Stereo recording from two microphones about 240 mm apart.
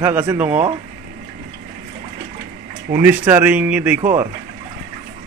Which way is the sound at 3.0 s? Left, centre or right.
Centre.